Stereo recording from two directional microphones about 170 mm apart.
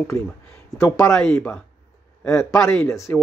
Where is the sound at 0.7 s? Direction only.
15° left (ahead or behind).